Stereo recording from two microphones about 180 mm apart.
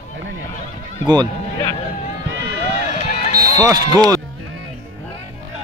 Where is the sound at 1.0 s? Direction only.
25° right (ahead or behind).